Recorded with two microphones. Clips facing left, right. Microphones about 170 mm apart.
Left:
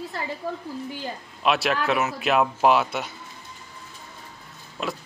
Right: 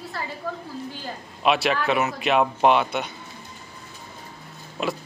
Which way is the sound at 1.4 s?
Centre (ahead or behind).